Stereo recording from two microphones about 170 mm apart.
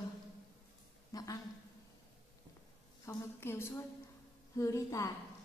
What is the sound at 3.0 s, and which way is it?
A woman's voice, 15° left (ahead or behind).